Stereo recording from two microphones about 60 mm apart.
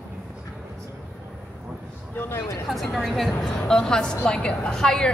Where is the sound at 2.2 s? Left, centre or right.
Left.